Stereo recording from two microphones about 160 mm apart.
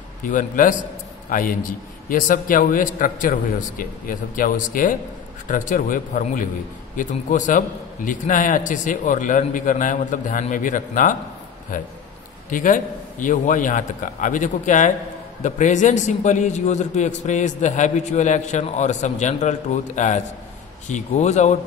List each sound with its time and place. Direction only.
0.3 s a man's voice: 55° left (ahead or behind)